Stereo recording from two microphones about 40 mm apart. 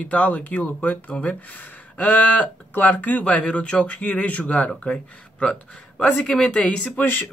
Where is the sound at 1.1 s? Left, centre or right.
Left.